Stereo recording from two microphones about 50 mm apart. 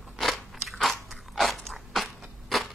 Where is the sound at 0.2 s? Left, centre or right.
Centre.